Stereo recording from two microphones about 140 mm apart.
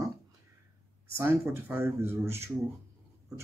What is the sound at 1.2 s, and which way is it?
Speech, 15° right (ahead or behind).